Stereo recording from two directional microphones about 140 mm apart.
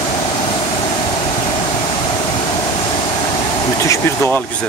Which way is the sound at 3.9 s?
15° left (ahead or behind).